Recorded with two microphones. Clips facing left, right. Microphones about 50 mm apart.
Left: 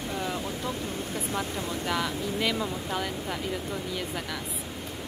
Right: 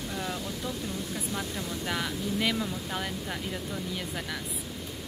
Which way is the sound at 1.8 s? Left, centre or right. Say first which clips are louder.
Left 3 dB; centre.